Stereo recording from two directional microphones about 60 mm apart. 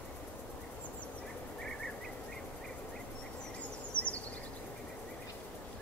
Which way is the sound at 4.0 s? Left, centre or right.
Left.